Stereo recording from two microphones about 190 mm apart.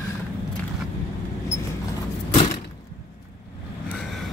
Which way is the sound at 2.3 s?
35° left (ahead or behind).